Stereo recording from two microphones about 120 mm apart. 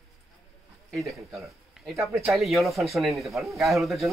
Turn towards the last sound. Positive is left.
turn(degrees=0)  # may be behind; listen again after turning